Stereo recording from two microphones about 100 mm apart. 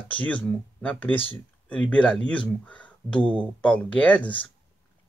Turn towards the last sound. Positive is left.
turn(degrees=15)  # may be behind; listen again after turning